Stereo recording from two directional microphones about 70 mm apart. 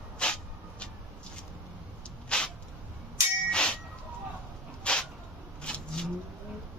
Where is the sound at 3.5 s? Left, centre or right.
Centre.